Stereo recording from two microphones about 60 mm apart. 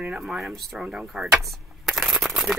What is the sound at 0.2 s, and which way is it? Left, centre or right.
Speech, centre.